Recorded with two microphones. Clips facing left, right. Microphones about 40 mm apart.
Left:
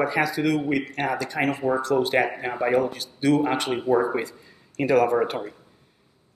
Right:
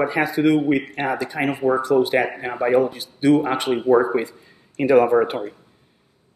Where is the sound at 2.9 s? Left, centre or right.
Right.